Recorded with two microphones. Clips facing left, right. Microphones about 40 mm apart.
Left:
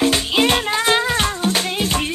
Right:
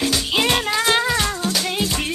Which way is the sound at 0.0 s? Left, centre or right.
Left.